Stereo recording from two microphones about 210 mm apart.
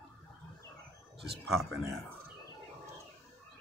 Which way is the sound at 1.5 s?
Centre (ahead or behind).